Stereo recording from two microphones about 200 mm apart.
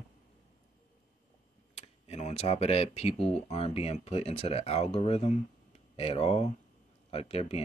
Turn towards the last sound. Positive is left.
turn(degrees=30)  # may be behind; listen again after turning